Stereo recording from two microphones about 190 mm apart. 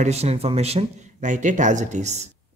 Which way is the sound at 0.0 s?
35° right (ahead or behind).